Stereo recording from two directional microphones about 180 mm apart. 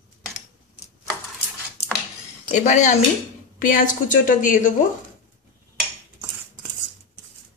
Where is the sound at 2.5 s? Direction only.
40° left (ahead or behind).